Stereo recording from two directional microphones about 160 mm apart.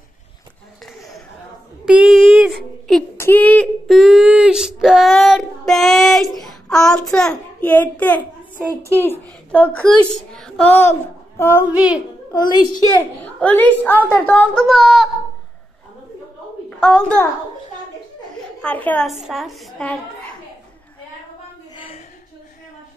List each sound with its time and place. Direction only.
0.8 s a sound: centre (ahead or behind)
3.2 s child singing: 10° left (ahead or behind)
7.1 s a child's voice: 5° left (ahead or behind)
11.6 s a child's voice: 10° right (ahead or behind)
12.3 s a child's voice: 25° left (ahead or behind)
13.2 s a child's voice: 10° left (ahead or behind)
18.6 s a woman's voice: 10° left (ahead or behind)